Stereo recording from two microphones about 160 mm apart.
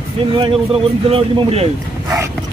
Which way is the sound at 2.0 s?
20° right (ahead or behind).